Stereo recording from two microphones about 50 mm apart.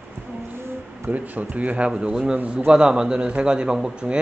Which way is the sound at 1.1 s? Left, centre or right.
Right.